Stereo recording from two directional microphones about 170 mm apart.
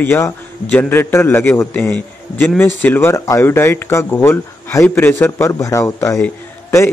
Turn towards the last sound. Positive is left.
turn(degrees=15)  # may be behind; listen again after turning